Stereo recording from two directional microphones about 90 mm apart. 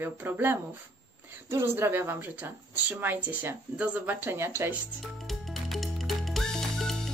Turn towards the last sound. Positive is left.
turn(degrees=0)  # may be behind; listen again after turning